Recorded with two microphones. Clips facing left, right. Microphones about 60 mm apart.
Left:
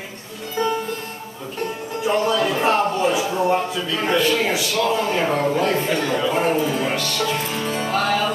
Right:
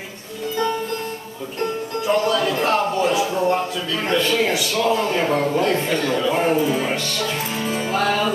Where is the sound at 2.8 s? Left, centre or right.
Centre.